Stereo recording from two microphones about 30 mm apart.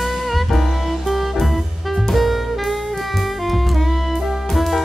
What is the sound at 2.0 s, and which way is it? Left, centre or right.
Saxophone, centre.